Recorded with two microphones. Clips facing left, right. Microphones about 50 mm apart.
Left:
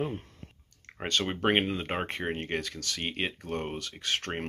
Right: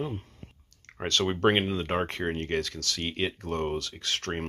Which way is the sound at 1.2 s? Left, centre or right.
Centre.